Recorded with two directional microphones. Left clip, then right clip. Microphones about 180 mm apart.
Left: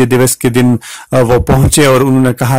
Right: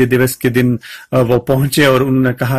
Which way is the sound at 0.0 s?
45° left (ahead or behind).